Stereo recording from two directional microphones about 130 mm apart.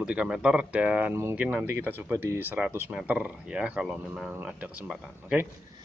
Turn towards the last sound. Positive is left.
turn(degrees=-5)  # may be behind; listen again after turning